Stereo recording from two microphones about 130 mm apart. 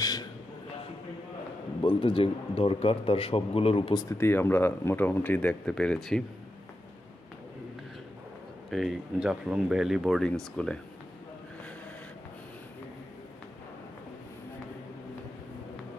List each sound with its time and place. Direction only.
0.0 s a sound: 30° left (ahead or behind)
1.8 s a man's voice: 40° left (ahead or behind)
3.9 s speech: 30° left (ahead or behind)
4.2 s speech: 15° left (ahead or behind)
8.6 s speech: centre (ahead or behind)